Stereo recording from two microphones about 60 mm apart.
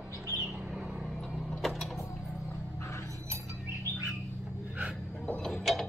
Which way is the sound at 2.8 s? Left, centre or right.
Left.